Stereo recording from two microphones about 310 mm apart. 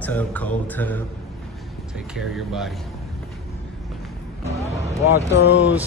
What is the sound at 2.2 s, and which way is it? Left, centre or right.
Speech, centre.